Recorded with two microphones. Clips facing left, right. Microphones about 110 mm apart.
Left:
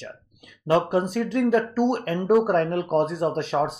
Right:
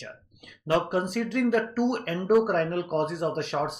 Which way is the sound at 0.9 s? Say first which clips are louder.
Left 4 dB; 30° left (ahead or behind).